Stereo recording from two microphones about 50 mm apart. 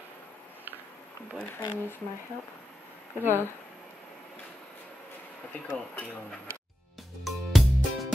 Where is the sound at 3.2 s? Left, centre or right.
Left.